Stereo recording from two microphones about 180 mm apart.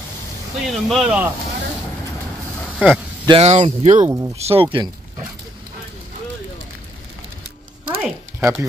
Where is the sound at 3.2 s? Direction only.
35° right (ahead or behind).